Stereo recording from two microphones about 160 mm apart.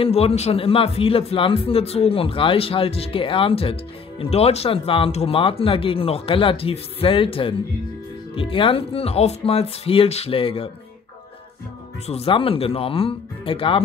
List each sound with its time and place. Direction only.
0.0 s speech: 40° left (ahead or behind)
12.1 s speech: 35° left (ahead or behind)